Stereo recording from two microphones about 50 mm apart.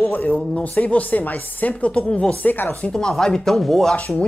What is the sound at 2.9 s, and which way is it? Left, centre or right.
Speech, centre.